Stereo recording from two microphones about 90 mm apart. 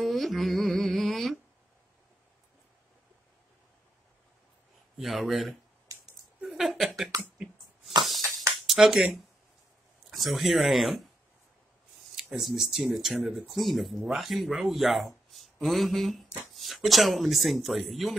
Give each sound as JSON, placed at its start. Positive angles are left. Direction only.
{"t": 0.0, "sound": "music", "side_deg": 0}
{"t": 4.9, "sound": "speech", "side_deg": 0}
{"t": 5.9, "sound": "a sound", "side_deg": -40}
{"t": 6.4, "sound": "a sound", "side_deg": 0}
{"t": 8.6, "sound": "speech", "side_deg": -5}
{"t": 12.2, "sound": "speech", "side_deg": -5}